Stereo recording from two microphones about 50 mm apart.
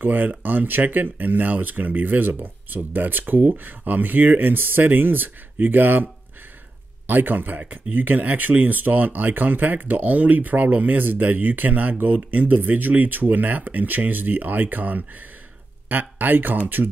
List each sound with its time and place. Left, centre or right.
0.0 s speech: right
7.1 s speech: right